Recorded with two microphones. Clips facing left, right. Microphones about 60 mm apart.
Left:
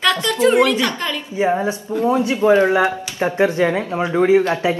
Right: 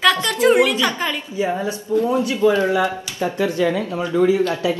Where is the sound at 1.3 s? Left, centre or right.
Left.